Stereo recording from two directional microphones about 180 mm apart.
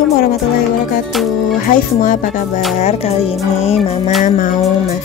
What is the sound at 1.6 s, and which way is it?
Speech, 45° left (ahead or behind).